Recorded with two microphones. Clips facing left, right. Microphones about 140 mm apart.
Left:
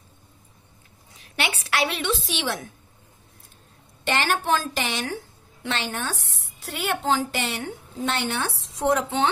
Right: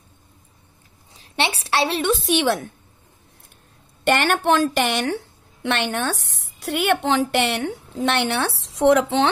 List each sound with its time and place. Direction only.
1.1 s a woman's voice: 30° right (ahead or behind)
2.0 s a woman's voice: 55° right (ahead or behind)
4.0 s a woman's voice: 60° right (ahead or behind); by 9.3 s 90° right